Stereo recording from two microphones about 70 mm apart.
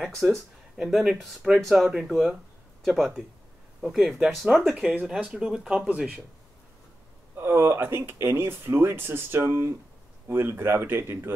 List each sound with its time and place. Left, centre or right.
0.0 s speech: centre
5.9 s speech: right
7.3 s speech: right